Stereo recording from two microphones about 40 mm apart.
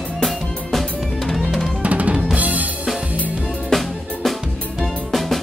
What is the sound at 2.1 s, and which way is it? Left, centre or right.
Drum kit, right.